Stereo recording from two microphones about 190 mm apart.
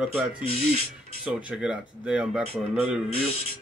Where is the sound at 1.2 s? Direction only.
5° right (ahead or behind).